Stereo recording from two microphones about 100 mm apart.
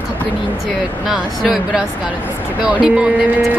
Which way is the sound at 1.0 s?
5° right (ahead or behind).